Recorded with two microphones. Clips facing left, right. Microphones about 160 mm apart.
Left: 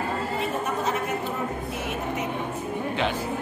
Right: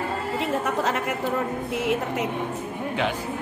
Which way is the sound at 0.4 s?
90° right.